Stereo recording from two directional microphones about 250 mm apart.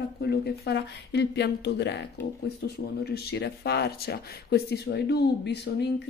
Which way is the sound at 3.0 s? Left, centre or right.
Left.